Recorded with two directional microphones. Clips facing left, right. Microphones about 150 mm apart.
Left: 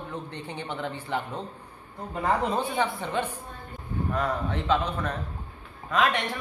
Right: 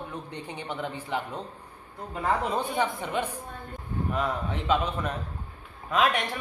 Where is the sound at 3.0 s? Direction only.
10° right (ahead or behind).